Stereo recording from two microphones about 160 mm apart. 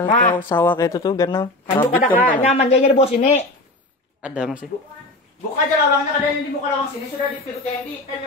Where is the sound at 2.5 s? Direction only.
40° left (ahead or behind).